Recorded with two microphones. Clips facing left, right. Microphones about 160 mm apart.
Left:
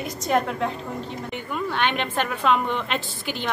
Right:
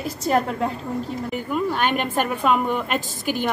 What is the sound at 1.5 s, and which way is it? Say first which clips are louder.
A woman's voice: right 3 dB; 5° right (ahead or behind).